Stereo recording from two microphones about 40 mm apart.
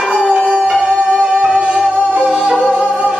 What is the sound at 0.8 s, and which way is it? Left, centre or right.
Music, right.